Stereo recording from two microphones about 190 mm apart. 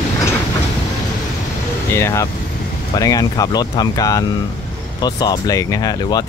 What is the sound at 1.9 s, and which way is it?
Speech, 15° left (ahead or behind).